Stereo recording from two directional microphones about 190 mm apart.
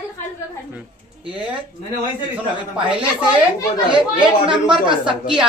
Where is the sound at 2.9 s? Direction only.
30° right (ahead or behind).